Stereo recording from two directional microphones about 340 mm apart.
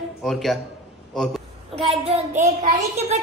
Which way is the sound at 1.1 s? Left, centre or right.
Centre.